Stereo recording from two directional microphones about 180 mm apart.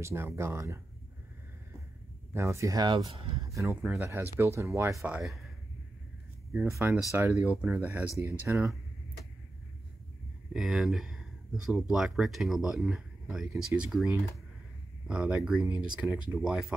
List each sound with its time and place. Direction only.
0.0 s speech: 15° right (ahead or behind)
2.3 s speech: 15° right (ahead or behind)
3.4 s speech: 15° right (ahead or behind)
6.5 s speech: 15° right (ahead or behind)
10.5 s speech: centre (ahead or behind)